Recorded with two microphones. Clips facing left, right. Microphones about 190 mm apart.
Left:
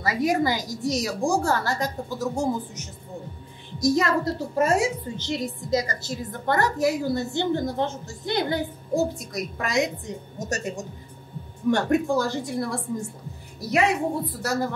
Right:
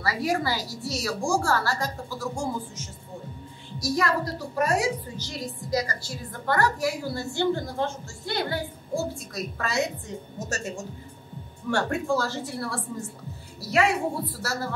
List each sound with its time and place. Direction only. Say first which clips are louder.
0.0 s a woman's voice: left 4 dB; 20° left (ahead or behind)
11.7 s a woman's voice: left 3 dB; 15° left (ahead or behind)